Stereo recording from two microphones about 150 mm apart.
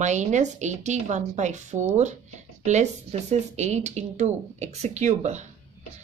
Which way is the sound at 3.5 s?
50° right (ahead or behind).